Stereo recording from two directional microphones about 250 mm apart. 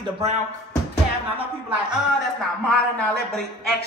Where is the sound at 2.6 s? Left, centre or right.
Centre.